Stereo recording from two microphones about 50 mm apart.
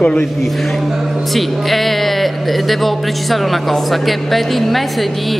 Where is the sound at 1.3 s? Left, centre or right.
Centre.